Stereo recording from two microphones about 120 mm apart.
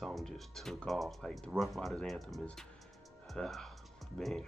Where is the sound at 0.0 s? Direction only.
Centre (ahead or behind).